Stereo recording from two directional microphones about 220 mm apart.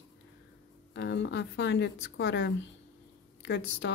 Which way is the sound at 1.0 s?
55° left (ahead or behind).